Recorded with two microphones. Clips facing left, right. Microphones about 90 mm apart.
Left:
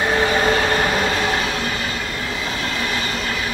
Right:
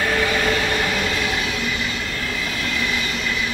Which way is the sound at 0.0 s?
30° left (ahead or behind).